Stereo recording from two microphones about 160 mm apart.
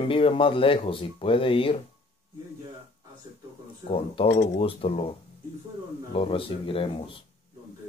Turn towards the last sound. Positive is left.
turn(degrees=35)  # may be behind; listen again after turning